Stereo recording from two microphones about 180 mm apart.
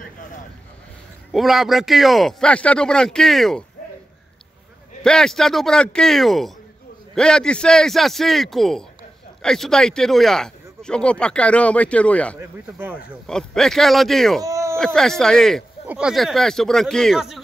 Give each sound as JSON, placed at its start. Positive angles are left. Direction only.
{"t": 1.3, "sound": "speech", "side_deg": 0}
{"t": 5.0, "sound": "speech", "side_deg": 5}
{"t": 12.4, "sound": "speech", "side_deg": -15}
{"t": 12.9, "sound": "speech", "side_deg": 5}
{"t": 14.4, "sound": "a sound", "side_deg": -15}
{"t": 15.0, "sound": "speech", "side_deg": 5}